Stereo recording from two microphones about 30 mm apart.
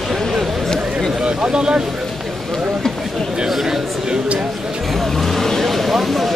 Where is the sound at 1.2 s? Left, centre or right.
Right.